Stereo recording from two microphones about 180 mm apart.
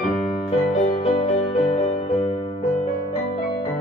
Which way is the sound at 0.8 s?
35° left (ahead or behind).